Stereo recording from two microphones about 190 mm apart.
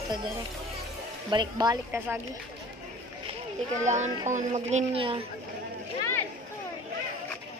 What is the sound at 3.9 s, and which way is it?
Speech, 40° right (ahead or behind).